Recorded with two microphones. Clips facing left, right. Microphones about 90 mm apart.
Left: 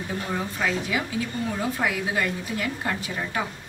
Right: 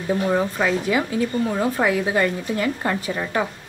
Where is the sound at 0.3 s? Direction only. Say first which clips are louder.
Right 4 dB; 50° right (ahead or behind).